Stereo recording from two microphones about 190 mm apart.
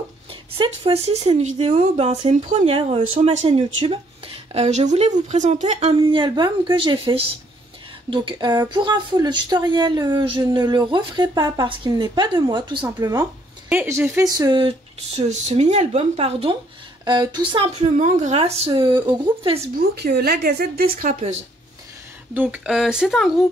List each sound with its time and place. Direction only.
0.3 s a woman's voice: 30° right (ahead or behind)
15.1 s speech: 40° right (ahead or behind)
20.0 s speech: 60° right (ahead or behind); by 21.4 s 40° right (ahead or behind)
22.3 s speech: 5° right (ahead or behind)